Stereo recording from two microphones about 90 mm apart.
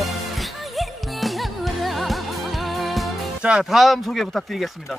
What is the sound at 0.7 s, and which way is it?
Music, centre (ahead or behind).